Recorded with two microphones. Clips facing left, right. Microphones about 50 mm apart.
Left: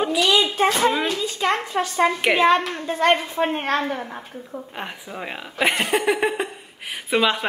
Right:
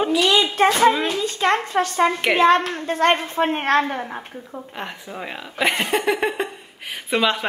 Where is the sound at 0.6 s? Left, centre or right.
Right.